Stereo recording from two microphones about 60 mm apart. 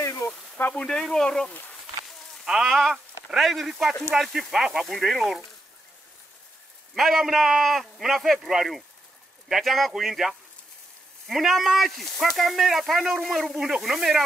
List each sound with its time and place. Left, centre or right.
0.0 s a sound: left
0.8 s speech: centre
2.4 s a man's voice: centre
6.9 s a man's voice: centre